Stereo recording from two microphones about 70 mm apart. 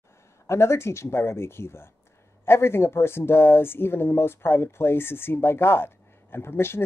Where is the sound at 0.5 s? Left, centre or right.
Left.